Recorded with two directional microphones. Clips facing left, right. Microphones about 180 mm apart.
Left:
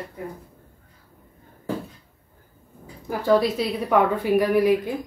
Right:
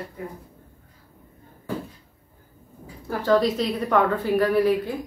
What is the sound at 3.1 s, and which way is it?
A woman's voice, 10° left (ahead or behind).